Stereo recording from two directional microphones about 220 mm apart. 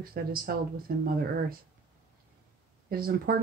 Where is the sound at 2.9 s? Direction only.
40° right (ahead or behind).